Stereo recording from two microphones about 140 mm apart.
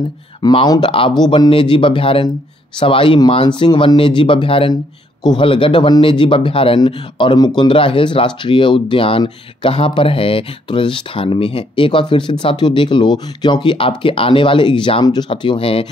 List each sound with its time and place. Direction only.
0.4 s speech: 35° left (ahead or behind)